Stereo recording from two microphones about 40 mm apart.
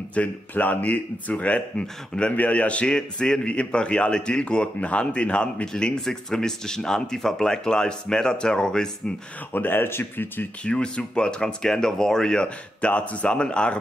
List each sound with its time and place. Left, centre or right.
0.1 s speech: left
1.8 s speech: left
2.3 s speech: left
2.9 s speech: centre
5.9 s speech: centre
9.5 s speech: left
10.6 s speech: left
12.4 s speech: left